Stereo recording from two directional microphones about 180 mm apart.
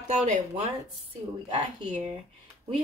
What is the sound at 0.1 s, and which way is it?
Speech, 40° right (ahead or behind).